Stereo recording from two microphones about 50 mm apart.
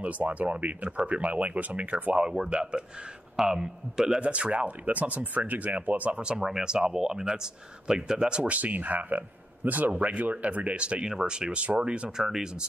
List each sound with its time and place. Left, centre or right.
0.0 s speech: right
2.2 s speech: centre
4.2 s speech: right
6.2 s speech: centre
8.5 s speech: right
12.2 s speech: centre